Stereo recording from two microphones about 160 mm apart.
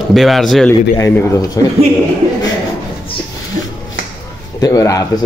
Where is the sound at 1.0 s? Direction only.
20° left (ahead or behind).